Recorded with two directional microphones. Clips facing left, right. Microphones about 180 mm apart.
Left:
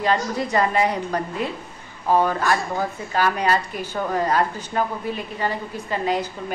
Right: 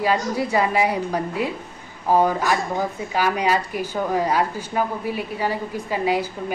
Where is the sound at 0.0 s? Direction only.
10° right (ahead or behind).